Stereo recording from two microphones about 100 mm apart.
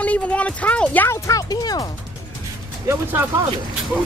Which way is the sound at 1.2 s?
35° left (ahead or behind).